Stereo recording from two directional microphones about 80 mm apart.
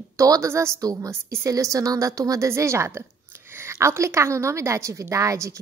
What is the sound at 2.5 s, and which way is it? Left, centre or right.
A woman's voice, right.